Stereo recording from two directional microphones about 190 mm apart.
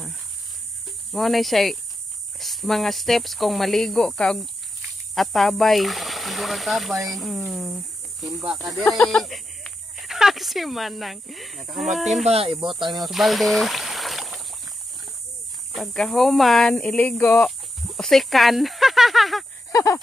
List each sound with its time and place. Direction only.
1.1 s speech: centre (ahead or behind)
12.3 s speech: 30° right (ahead or behind)
12.9 s speech: centre (ahead or behind)
15.7 s speech: centre (ahead or behind)
19.7 s a sound: 15° left (ahead or behind)